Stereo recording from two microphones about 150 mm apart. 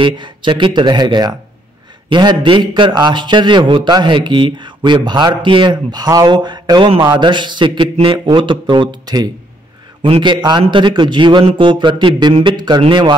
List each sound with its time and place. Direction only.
0.0 s a man's voice: 35° right (ahead or behind)